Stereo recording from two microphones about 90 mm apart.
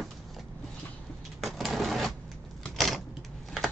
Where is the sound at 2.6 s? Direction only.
Centre (ahead or behind).